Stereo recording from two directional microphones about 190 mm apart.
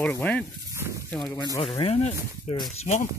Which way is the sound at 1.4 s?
25° left (ahead or behind).